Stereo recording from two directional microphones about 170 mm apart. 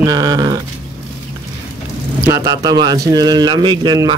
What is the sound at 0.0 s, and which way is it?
Speech, 25° right (ahead or behind).